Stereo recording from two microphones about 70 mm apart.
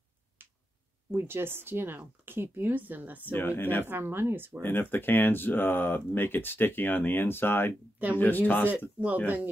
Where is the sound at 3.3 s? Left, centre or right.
Left.